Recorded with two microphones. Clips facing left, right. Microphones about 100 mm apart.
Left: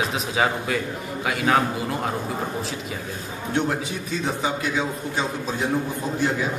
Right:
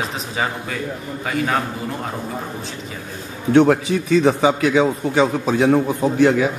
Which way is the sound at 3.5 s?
80° right.